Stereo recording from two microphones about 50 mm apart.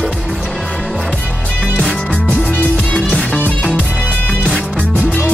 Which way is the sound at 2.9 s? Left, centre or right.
Left.